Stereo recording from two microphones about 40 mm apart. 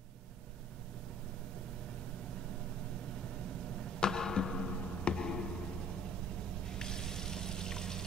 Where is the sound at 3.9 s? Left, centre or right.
Centre.